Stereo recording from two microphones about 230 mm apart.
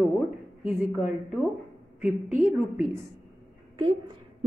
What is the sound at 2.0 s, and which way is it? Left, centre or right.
Speech, centre.